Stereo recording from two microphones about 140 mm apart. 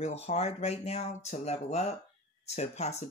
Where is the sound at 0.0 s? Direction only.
50° left (ahead or behind).